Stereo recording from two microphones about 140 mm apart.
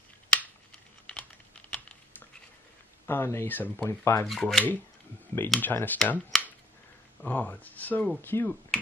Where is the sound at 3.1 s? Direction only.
15° left (ahead or behind).